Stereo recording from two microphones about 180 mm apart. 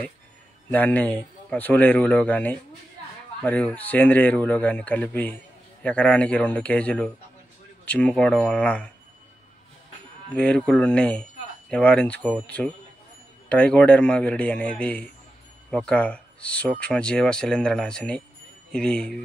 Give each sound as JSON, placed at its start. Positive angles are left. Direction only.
{"t": 0.7, "sound": "a man's voice", "side_deg": 10}
{"t": 10.3, "sound": "a man's voice", "side_deg": 5}